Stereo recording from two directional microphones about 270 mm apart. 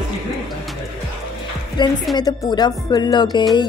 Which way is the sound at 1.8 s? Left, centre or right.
Centre.